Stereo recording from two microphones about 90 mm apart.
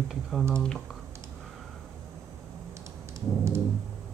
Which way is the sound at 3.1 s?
35° right (ahead or behind).